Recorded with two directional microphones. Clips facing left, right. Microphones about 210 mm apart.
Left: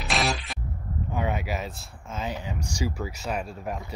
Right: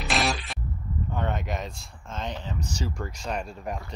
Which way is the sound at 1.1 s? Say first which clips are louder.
Left 2 dB; 10° left (ahead or behind).